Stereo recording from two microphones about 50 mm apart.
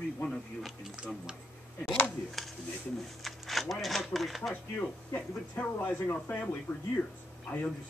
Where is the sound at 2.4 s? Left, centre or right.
Centre.